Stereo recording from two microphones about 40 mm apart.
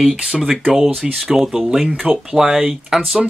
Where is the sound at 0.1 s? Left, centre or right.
Centre.